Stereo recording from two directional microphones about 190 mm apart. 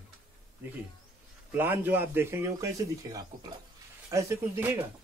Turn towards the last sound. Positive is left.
turn(degrees=-15)  # may be behind; listen again after turning